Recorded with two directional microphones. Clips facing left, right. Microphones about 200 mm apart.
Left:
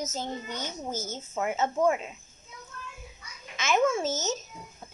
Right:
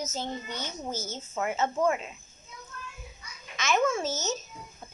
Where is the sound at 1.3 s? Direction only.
10° left (ahead or behind).